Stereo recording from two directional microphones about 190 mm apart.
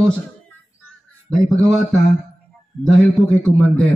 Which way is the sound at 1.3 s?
Centre (ahead or behind).